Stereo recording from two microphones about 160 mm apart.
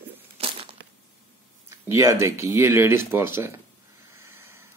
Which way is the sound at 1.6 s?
15° right (ahead or behind).